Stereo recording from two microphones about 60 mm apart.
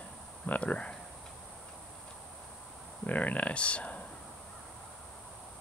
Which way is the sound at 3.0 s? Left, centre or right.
Left.